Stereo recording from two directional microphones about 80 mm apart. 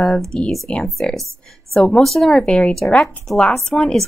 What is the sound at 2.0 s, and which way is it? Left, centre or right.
A woman's voice, centre.